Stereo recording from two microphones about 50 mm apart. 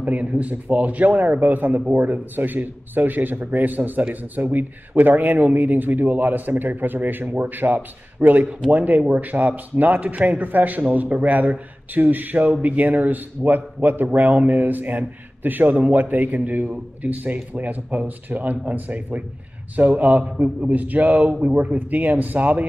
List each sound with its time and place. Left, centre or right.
0.0 s speech: right